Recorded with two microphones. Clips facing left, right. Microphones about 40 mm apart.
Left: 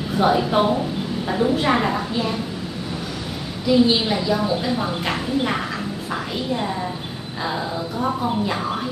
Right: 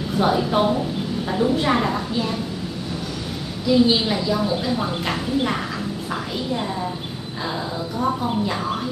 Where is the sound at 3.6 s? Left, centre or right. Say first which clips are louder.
Even; centre.